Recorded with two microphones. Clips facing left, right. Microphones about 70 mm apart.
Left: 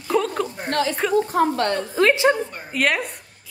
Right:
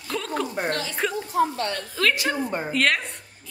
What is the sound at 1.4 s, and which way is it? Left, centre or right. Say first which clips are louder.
Speech: right 1 dB; left.